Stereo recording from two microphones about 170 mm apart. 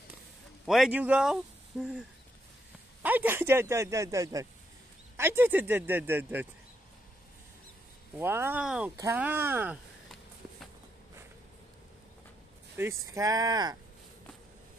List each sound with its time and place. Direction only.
0.7 s speech: 5° right (ahead or behind)
8.2 s speech: 15° right (ahead or behind)
12.7 s speech: 15° right (ahead or behind)